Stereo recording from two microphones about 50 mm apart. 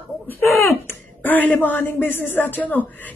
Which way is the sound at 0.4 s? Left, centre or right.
Left.